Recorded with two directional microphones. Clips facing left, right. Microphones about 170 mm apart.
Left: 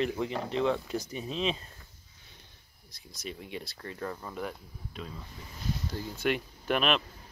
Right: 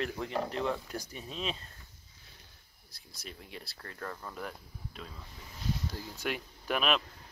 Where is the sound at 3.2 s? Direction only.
Centre (ahead or behind).